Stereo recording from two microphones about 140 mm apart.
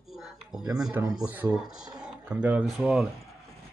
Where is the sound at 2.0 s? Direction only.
10° right (ahead or behind).